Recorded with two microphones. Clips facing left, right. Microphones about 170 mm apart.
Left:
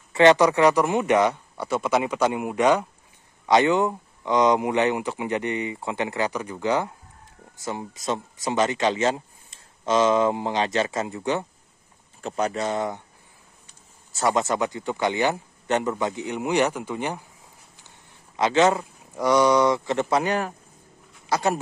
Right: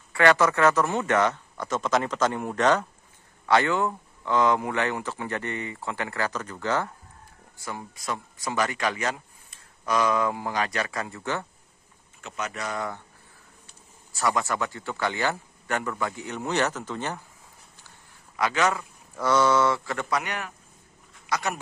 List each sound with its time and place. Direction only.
0.1 s speech: 20° left (ahead or behind)
12.2 s speech: 35° left (ahead or behind)
14.1 s speech: 25° left (ahead or behind)
18.3 s speech: 25° left (ahead or behind)
19.1 s speech: 15° left (ahead or behind)